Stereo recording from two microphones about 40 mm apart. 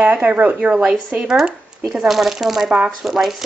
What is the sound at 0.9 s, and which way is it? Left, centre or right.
Speech, centre.